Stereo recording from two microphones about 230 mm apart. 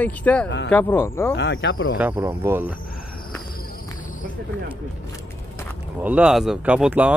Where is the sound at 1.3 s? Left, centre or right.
Left.